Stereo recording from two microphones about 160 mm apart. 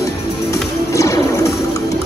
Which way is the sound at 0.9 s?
20° left (ahead or behind).